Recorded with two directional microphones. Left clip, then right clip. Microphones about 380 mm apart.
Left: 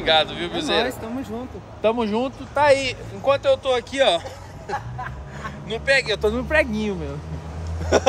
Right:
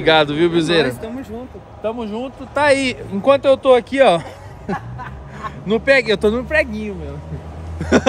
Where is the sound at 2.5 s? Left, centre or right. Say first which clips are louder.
Right 3 dB; right.